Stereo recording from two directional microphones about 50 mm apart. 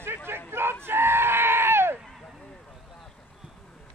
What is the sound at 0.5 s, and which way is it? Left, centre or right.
Goat, right.